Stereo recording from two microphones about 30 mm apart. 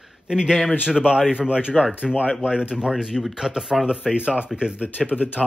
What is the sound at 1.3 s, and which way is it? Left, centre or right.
Speech, right.